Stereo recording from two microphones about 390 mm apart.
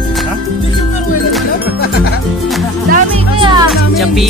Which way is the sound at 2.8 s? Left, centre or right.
Centre.